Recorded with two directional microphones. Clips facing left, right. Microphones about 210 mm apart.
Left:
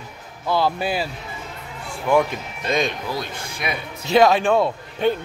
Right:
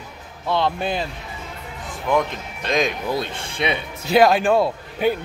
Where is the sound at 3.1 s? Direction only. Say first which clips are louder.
Right 3 dB; 25° right (ahead or behind).